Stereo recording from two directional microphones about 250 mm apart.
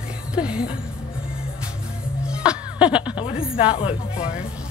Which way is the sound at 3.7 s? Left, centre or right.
Left.